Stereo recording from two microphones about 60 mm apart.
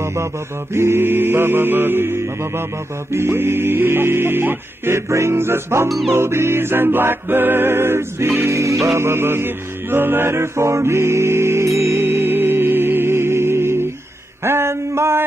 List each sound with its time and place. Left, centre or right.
0.0 s a capella: right
0.7 s music: right
5.9 s music: centre
6.1 s music: right
8.4 s music: right
14.4 s a sound: right